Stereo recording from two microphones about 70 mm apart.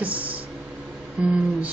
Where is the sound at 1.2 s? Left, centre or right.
Centre.